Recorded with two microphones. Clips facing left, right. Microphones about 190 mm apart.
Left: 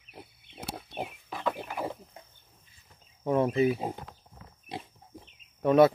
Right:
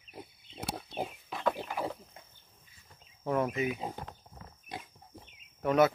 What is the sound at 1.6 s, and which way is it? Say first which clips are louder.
Wild animals: left 1 dB; 15° left (ahead or behind).